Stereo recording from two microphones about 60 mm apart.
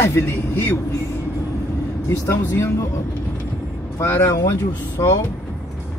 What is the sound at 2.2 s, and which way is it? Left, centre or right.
Speech, left.